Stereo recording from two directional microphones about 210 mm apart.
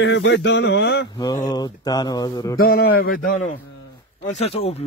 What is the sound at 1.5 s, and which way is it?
Speech, 20° left (ahead or behind).